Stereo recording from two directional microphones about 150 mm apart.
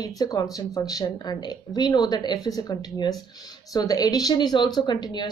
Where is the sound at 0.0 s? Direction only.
25° left (ahead or behind).